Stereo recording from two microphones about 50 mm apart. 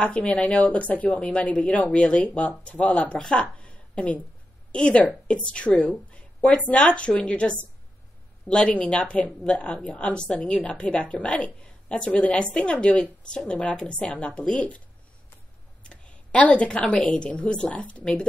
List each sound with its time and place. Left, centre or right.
0.0 s a woman's voice: left
3.5 s a sound: left
4.7 s a woman's voice: left
12.7 s a woman's voice: left
15.8 s a woman's voice: left